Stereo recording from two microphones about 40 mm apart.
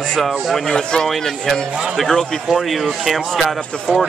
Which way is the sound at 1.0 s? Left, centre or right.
Centre.